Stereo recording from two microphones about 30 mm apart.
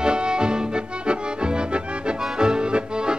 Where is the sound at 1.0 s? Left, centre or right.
Right.